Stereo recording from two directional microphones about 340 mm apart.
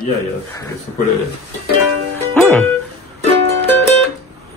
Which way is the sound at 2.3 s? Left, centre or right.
Centre.